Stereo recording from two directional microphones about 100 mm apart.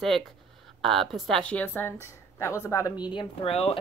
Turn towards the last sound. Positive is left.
turn(degrees=80)